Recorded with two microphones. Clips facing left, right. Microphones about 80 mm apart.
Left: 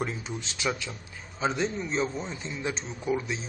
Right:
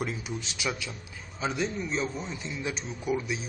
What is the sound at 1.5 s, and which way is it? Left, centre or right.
Speech, left.